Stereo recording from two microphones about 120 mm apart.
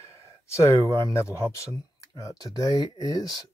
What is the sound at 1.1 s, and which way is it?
Speech, 25° left (ahead or behind).